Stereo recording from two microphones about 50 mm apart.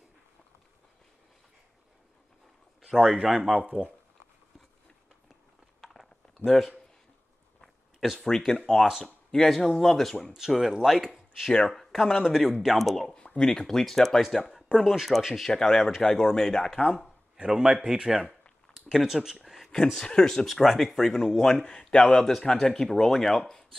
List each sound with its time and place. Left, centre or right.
3.0 s speech: centre
3.6 s speech: right
7.6 s a sound: centre
8.5 s a man's voice: centre
10.3 s speech: centre
12.3 s speech: centre
13.1 s a man's voice: centre
15.5 s a man's voice: centre
17.4 s speech: centre
19.7 s a man's voice: centre